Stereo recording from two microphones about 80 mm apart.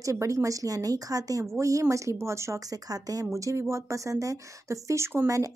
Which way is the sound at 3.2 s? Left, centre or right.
Right.